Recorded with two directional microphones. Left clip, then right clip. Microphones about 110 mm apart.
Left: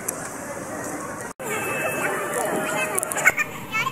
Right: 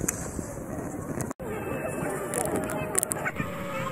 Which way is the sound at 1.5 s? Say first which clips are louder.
Left 9 dB; 20° left (ahead or behind).